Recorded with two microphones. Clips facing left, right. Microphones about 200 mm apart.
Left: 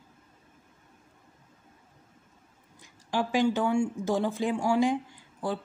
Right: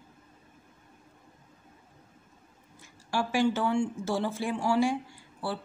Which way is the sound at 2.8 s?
15° left (ahead or behind).